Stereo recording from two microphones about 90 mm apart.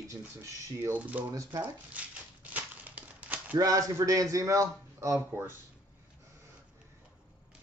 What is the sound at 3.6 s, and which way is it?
A man's voice, 40° right (ahead or behind).